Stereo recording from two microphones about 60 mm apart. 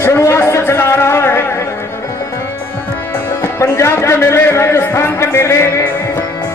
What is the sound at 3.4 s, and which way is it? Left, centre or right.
A man's voice, left.